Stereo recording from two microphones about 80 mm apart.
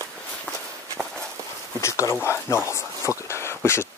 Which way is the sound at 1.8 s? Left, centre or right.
Left.